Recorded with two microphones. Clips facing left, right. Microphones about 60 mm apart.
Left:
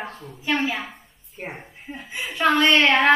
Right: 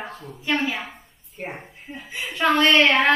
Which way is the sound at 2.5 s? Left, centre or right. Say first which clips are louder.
Right 1 dB; centre.